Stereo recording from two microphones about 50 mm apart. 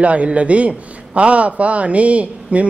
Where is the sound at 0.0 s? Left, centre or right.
Right.